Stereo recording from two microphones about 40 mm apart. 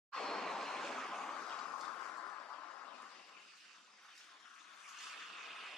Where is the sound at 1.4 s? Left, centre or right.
Left.